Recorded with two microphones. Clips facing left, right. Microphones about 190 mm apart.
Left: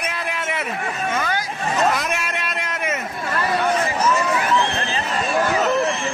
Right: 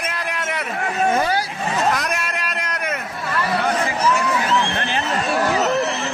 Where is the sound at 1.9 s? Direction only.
Centre (ahead or behind).